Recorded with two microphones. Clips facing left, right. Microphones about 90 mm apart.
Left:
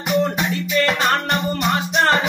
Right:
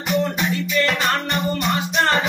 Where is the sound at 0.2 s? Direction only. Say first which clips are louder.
Left 1 dB; 30° left (ahead or behind).